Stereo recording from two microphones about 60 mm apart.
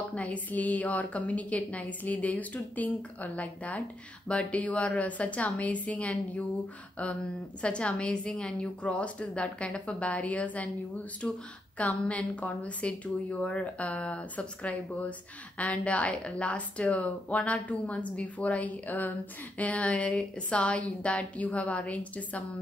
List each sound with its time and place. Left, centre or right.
0.1 s a woman's voice: left
7.6 s a woman's voice: centre